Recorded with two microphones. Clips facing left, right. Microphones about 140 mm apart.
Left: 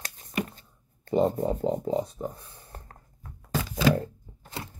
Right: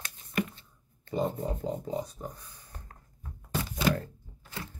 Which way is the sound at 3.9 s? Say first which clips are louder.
Left 6 dB; 25° left (ahead or behind).